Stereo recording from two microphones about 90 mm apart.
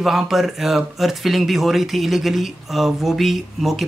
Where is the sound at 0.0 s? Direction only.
5° right (ahead or behind).